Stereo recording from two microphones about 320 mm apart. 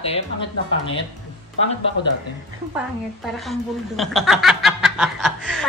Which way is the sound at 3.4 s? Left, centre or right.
Centre.